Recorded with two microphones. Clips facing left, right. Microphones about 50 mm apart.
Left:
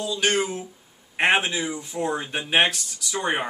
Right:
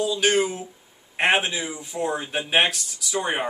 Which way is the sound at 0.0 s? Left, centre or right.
Centre.